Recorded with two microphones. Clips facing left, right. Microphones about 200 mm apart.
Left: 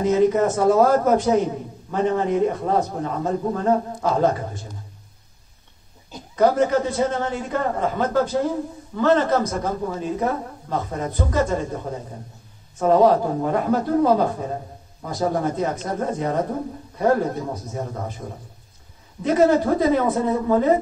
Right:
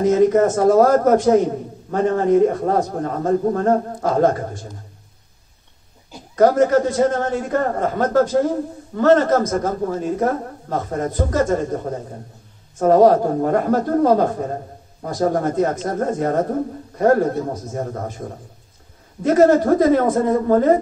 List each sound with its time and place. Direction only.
0.0 s a man's voice: 45° right (ahead or behind)
6.3 s a man's voice: 45° right (ahead or behind)
19.2 s a man's voice: 50° right (ahead or behind)